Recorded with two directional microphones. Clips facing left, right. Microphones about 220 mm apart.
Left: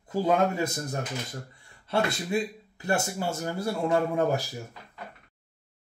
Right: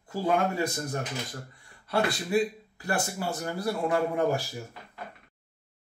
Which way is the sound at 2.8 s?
25° left (ahead or behind).